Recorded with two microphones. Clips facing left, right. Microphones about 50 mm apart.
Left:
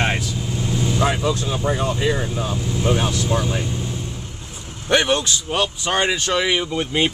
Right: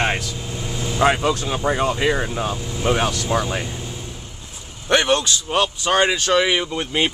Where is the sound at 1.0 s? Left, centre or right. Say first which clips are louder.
Right 5 dB; right.